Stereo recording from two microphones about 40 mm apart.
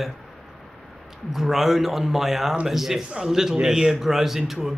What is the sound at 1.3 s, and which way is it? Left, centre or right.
A man's voice, centre.